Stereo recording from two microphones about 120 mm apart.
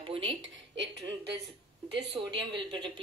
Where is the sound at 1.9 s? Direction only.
40° right (ahead or behind).